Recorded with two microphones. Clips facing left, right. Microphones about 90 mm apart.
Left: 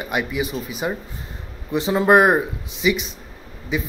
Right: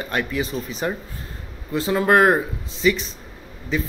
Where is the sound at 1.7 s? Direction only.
20° left (ahead or behind).